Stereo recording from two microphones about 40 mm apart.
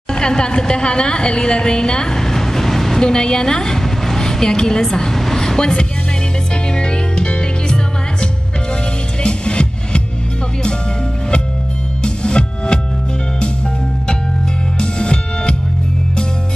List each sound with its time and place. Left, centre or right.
0.2 s a woman's voice: centre
4.9 s vehicle: centre
6.7 s music: left
12.0 s music: left
14.8 s music: left